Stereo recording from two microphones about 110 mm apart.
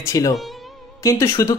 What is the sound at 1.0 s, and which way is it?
Speech, 25° left (ahead or behind).